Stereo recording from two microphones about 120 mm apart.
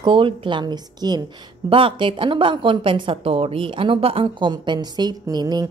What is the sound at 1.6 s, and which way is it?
A woman's voice, 50° right (ahead or behind).